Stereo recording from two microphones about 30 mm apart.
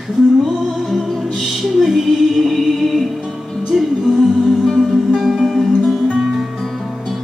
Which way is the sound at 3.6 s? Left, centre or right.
Centre.